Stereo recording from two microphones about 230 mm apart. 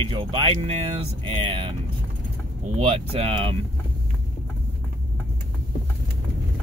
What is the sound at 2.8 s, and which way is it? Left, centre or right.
Speech, right.